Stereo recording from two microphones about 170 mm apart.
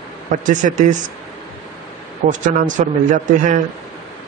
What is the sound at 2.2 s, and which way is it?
Speech, 50° right (ahead or behind).